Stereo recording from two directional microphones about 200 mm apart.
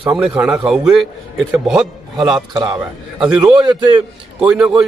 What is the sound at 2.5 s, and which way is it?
Speech, 15° right (ahead or behind).